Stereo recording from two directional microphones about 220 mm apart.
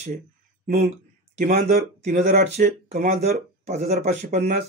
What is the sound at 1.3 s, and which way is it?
Speech, 30° right (ahead or behind).